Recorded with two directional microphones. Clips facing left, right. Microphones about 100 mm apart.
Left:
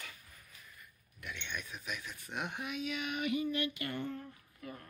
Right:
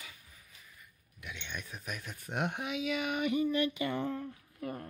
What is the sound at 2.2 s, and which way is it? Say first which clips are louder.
Speech: right 6 dB; 60° right (ahead or behind).